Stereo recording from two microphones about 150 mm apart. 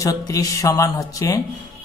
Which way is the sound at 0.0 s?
20° left (ahead or behind).